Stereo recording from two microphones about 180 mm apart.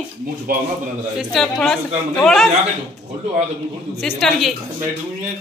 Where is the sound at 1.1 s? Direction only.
Centre (ahead or behind).